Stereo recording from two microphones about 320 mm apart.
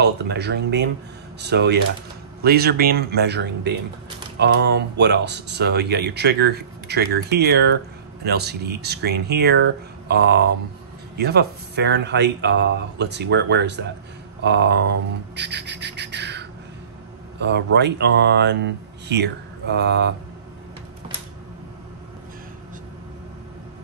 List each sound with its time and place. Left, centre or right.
0.0 s speech: right
15.3 s bird: right
17.4 s speech: right